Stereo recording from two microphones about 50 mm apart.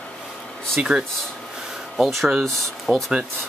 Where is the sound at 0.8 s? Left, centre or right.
Right.